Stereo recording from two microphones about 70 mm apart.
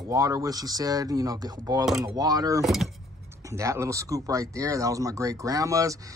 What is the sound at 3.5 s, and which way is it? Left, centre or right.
Speech, right.